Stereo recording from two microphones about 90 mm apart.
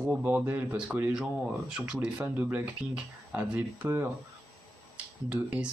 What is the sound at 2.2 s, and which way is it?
Speech, 20° right (ahead or behind).